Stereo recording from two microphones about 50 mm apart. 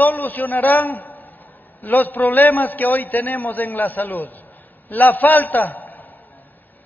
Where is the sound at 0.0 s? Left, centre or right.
Left.